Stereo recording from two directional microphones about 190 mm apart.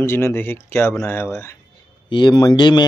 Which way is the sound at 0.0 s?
15° left (ahead or behind).